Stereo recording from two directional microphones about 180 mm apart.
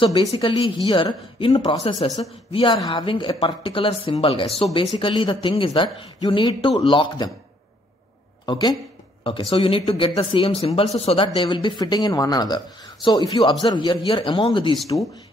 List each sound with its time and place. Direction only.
0.0 s speech: 30° left (ahead or behind)
8.5 s speech: 25° left (ahead or behind)